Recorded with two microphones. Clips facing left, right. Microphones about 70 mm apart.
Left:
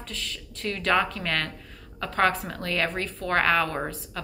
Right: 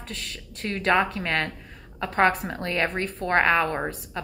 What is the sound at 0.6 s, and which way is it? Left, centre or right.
A woman's voice, right.